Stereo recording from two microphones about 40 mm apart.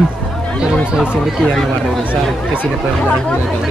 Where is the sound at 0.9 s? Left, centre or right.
Right.